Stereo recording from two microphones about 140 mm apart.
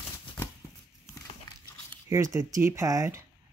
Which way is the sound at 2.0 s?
20° right (ahead or behind).